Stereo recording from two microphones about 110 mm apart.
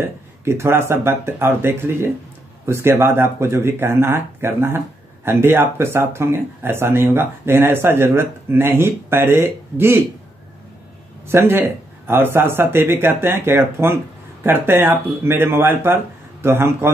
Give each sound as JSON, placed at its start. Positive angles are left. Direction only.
{"t": 0.0, "sound": "speech", "side_deg": -25}
{"t": 11.2, "sound": "speech", "side_deg": -20}